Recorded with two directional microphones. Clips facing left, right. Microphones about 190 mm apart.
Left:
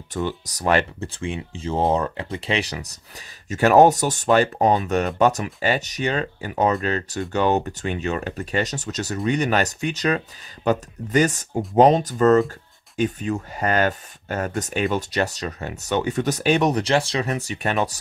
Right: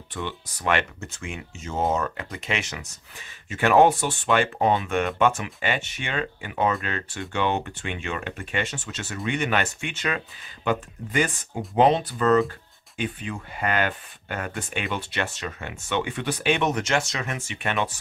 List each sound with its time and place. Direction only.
0.1 s speech: 40° left (ahead or behind)